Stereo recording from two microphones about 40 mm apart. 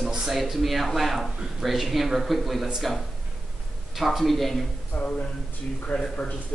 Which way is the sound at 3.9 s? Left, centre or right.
Centre.